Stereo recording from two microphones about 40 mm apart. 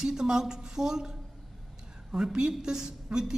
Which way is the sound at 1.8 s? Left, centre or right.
Centre.